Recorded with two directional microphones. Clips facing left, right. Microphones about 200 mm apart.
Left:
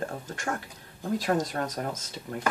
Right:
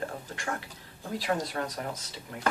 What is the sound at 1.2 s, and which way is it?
Speech, 45° left (ahead or behind).